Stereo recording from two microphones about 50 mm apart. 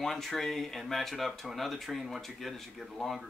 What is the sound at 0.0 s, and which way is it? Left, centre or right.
Speech, centre.